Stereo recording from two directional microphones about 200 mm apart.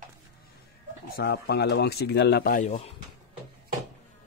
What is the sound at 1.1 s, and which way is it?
Speech, 50° left (ahead or behind).